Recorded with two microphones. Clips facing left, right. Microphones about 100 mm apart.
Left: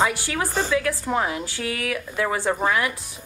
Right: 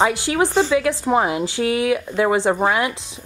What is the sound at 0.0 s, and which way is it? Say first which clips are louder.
Speech: right 5 dB; 20° right (ahead or behind).